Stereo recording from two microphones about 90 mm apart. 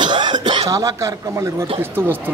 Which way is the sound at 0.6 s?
40° right (ahead or behind).